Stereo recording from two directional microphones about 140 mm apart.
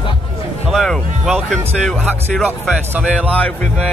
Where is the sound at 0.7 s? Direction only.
Centre (ahead or behind).